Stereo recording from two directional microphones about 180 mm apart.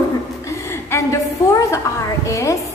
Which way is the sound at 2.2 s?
15° left (ahead or behind).